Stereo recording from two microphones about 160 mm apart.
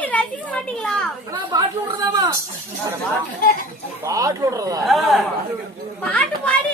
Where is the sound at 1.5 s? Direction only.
20° right (ahead or behind).